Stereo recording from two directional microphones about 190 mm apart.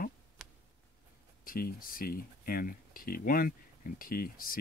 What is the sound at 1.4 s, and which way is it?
Speech, 50° left (ahead or behind).